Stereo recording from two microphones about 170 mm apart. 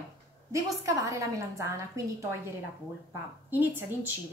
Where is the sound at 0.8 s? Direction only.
20° right (ahead or behind).